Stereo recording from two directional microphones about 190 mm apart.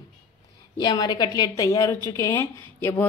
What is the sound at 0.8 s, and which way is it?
A woman's voice, 20° left (ahead or behind).